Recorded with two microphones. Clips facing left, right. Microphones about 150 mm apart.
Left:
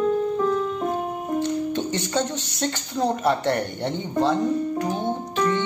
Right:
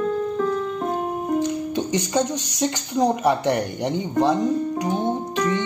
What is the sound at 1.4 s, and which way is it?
Speech, 15° right (ahead or behind).